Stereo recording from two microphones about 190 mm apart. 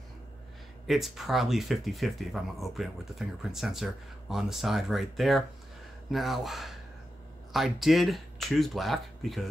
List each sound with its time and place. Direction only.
0.8 s speech: centre (ahead or behind)